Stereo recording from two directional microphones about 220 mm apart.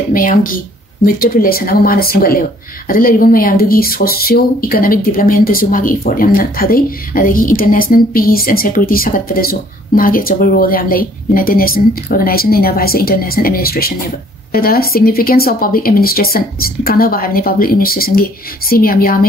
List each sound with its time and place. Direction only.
0.1 s speech: 40° left (ahead or behind)